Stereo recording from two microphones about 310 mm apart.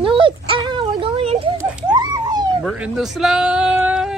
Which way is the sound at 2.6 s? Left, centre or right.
Centre.